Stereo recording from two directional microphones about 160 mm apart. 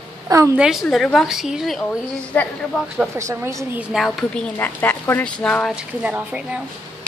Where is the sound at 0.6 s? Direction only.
5° right (ahead or behind).